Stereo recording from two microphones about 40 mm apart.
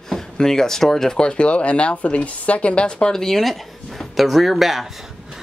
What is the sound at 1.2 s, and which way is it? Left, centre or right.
Speech, left.